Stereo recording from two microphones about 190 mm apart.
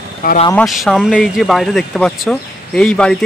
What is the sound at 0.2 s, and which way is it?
Speech, 45° left (ahead or behind).